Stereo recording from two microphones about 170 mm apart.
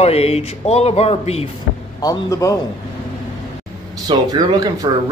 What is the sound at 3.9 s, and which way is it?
Speech, 25° right (ahead or behind).